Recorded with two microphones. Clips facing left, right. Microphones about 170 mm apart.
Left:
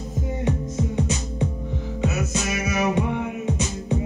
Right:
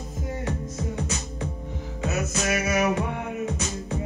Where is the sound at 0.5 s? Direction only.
20° left (ahead or behind).